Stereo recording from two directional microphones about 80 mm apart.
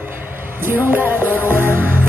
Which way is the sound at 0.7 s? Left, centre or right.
Right.